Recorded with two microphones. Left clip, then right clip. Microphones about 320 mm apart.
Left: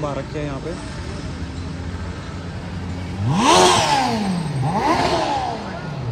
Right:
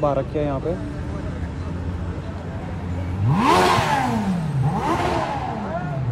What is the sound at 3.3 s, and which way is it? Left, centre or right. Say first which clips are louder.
Vehicle: left 3 dB; left.